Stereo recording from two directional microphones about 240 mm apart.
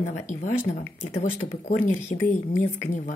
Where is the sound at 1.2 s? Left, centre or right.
Left.